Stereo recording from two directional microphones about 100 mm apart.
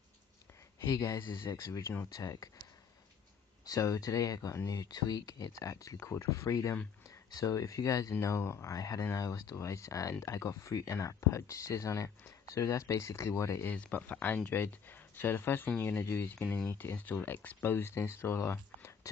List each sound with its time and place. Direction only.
0.8 s speech: 30° left (ahead or behind)
3.6 s speech: 35° left (ahead or behind)
4.8 s speech: 40° left (ahead or behind)
13.7 s speech: 15° left (ahead or behind)